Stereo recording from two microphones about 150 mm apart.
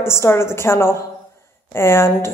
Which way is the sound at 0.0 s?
15° left (ahead or behind).